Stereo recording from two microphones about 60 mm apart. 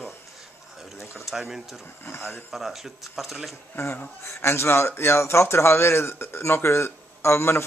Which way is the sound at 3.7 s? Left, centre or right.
Left.